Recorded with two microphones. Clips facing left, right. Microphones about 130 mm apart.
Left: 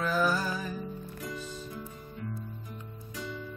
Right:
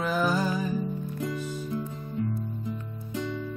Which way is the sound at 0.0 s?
20° right (ahead or behind).